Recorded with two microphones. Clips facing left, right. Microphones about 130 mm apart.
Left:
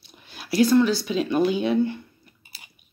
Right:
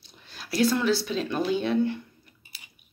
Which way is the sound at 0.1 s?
5° left (ahead or behind).